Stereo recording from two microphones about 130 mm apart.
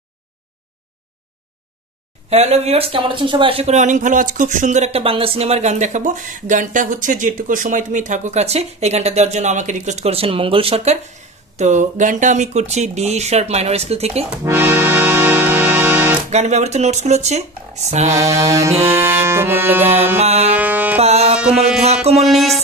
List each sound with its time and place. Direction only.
2.2 s speech: 55° right (ahead or behind)
11.5 s speech: 65° right (ahead or behind)
14.4 s music: 20° right (ahead or behind)
16.3 s speech: 60° right (ahead or behind)
18.3 s music: 25° right (ahead or behind)
20.2 s speech: 55° right (ahead or behind)
20.5 s music: 15° right (ahead or behind)
21.0 s music: 55° right (ahead or behind)
22.2 s music: centre (ahead or behind)